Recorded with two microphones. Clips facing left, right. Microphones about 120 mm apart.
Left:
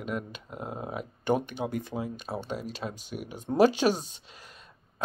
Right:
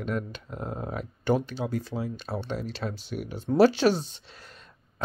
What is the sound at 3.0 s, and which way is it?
Speech, 45° left (ahead or behind).